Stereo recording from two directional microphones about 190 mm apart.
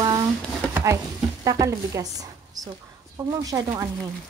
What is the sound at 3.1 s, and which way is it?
Speech, 20° right (ahead or behind).